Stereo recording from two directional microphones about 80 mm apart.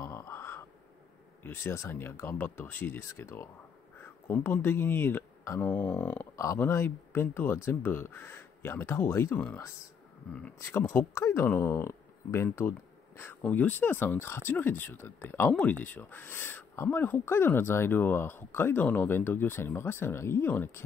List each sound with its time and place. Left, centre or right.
0.1 s a sound: left
1.4 s speech: left
6.3 s speech: left
10.9 s speech: left
12.5 s a sound: left
13.4 s speech: centre